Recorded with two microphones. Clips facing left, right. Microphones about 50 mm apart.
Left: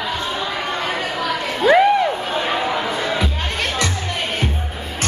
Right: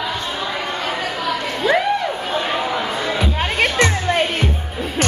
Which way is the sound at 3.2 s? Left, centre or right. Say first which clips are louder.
Right 4 dB; right.